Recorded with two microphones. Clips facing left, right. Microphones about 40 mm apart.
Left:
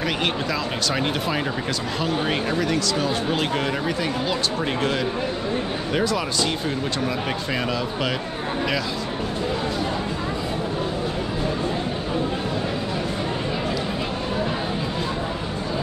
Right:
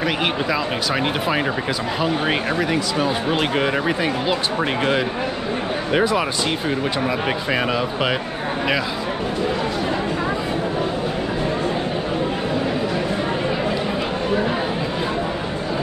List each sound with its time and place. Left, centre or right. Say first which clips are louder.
0.0 s speech: right 3 dB; centre